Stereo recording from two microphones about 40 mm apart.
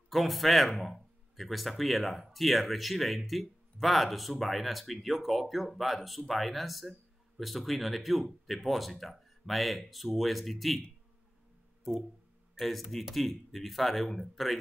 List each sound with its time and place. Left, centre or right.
0.1 s speech: centre
12.5 s speech: centre